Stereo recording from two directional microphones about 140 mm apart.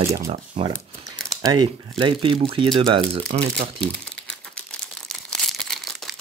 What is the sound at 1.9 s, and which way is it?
Speech, 40° right (ahead or behind).